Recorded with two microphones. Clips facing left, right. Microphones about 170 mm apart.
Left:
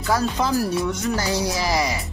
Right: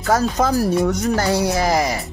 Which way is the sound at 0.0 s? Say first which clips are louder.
Right 4 dB; 45° right (ahead or behind).